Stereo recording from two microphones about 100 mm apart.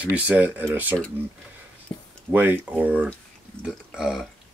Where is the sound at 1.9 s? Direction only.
35° left (ahead or behind).